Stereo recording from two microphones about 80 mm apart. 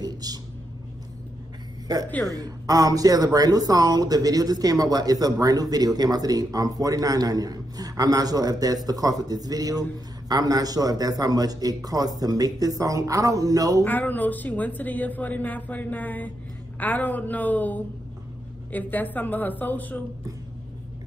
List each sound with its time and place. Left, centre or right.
0.0 s a sound: right
2.2 s speech: right
13.8 s speech: left